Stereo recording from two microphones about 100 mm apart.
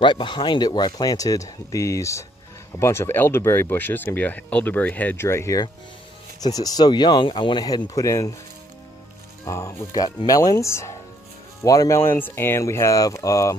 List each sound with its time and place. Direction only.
0.0 s speech: 50° left (ahead or behind); by 5.6 s 25° left (ahead or behind)
6.4 s speech: 40° left (ahead or behind)
9.4 s speech: 30° left (ahead or behind)
12.0 s speech: 25° left (ahead or behind)